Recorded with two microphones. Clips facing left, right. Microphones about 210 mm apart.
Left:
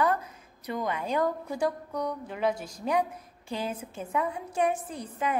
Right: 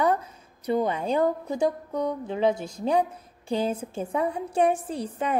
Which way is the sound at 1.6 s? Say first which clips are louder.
Right 4 dB; 25° right (ahead or behind).